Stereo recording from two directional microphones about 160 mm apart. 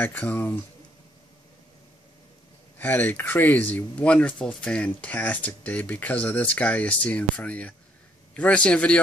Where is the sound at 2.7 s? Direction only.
10° left (ahead or behind).